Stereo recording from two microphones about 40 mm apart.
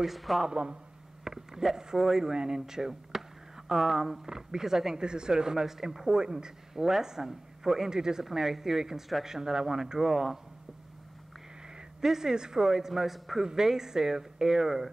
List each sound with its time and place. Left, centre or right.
0.0 s a man's voice: centre
0.5 s a man's voice: right
12.0 s speech: centre